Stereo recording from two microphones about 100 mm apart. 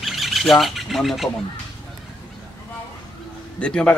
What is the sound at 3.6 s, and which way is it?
Speech, 10° left (ahead or behind).